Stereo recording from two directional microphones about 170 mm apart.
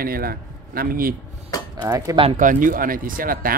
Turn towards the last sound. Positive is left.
turn(degrees=-55)  # may be behind; listen again after turning